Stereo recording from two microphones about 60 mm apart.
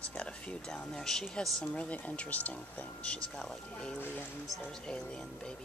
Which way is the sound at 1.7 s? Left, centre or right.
Left.